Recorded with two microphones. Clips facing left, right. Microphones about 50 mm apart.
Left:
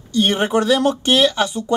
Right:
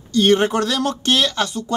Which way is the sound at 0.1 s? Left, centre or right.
Centre.